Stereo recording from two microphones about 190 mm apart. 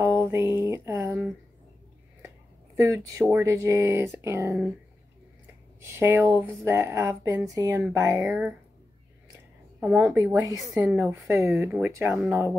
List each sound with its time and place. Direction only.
0.0 s a sound: 15° right (ahead or behind)
2.9 s speech: 15° right (ahead or behind)
5.8 s speech: 10° right (ahead or behind)
9.8 s speech: 5° right (ahead or behind)
10.8 s a woman's voice: centre (ahead or behind)